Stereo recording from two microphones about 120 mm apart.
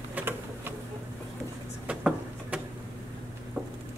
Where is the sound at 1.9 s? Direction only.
10° right (ahead or behind).